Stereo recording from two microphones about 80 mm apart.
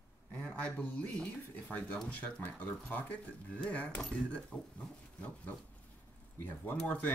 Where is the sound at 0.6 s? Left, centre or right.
Centre.